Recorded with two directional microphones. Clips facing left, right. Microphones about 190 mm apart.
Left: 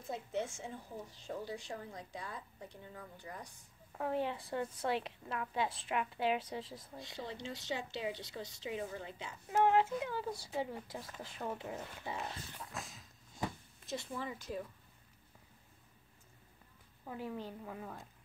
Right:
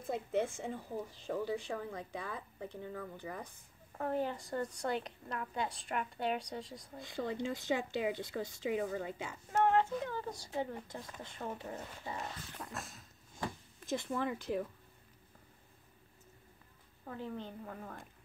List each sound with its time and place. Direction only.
0.0 s a woman's voice: 55° right (ahead or behind)
4.0 s a woman's voice: centre (ahead or behind)
7.0 s speech: 50° right (ahead or behind)
9.5 s speech: 5° left (ahead or behind)
12.7 s dog: centre (ahead or behind)
13.8 s a woman's voice: 55° right (ahead or behind)
17.1 s a woman's voice: 10° left (ahead or behind)